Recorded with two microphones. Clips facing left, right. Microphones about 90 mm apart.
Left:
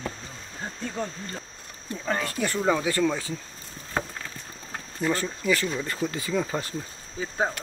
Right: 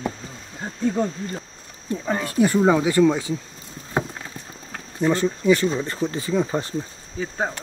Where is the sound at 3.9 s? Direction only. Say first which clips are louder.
Right 5 dB; 20° right (ahead or behind).